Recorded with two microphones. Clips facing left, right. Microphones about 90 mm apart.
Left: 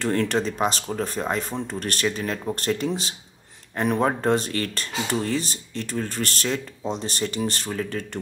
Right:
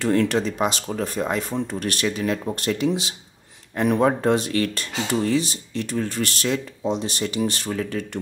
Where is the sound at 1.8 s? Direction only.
40° left (ahead or behind).